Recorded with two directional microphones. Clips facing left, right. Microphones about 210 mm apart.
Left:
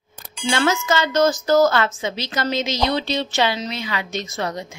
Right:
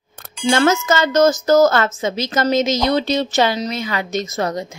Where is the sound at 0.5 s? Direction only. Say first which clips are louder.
Right 4 dB; 45° right (ahead or behind).